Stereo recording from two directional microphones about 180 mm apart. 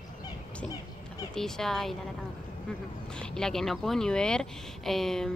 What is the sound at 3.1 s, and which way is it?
Speech, 5° left (ahead or behind).